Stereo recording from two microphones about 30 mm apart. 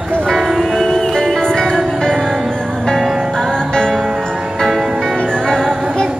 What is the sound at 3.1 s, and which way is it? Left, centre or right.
Music, centre.